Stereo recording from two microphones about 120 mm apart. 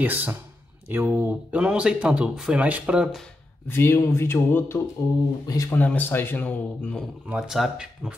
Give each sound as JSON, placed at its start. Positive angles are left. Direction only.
{"t": 0.0, "sound": "speech", "side_deg": -15}
{"t": 3.6, "sound": "speech", "side_deg": 20}
{"t": 7.2, "sound": "speech", "side_deg": -5}